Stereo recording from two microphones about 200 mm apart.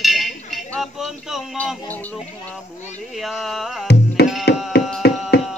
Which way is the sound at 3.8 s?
55° left (ahead or behind).